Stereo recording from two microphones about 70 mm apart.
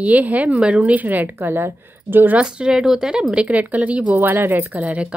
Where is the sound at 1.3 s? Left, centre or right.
Right.